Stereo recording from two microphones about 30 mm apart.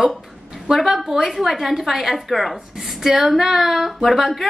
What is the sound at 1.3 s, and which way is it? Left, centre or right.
A woman's voice, centre.